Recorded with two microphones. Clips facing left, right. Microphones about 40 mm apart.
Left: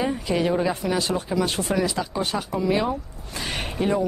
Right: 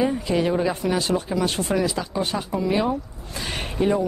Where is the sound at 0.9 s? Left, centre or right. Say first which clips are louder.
Right 1 dB; right.